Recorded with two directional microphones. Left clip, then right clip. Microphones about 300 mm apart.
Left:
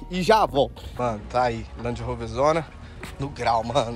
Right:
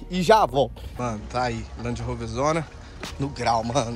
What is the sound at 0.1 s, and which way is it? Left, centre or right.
Speech, centre.